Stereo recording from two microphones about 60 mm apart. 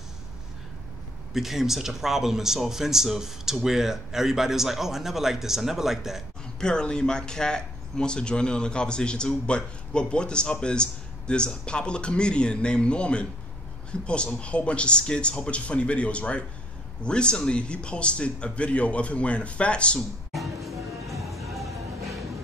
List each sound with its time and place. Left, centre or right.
1.3 s speech: centre
6.6 s speech: centre
20.0 s music: centre